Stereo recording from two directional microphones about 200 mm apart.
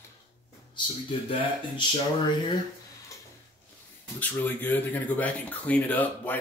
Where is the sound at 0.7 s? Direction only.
25° left (ahead or behind).